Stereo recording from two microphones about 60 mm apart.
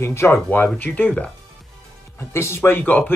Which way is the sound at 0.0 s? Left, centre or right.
Left.